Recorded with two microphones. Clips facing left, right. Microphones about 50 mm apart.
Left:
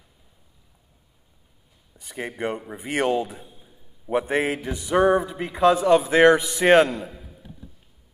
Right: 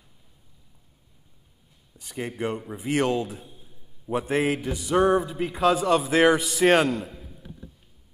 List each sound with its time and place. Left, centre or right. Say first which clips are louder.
2.0 s a man's voice: left 1 dB; centre